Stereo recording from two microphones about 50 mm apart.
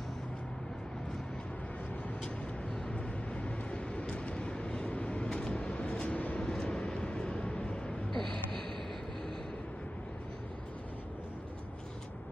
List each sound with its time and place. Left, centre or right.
2.2 s vehicle: centre
6.4 s vehicle: centre